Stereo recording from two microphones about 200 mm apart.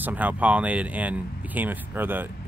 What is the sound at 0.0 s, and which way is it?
Speech, 5° right (ahead or behind).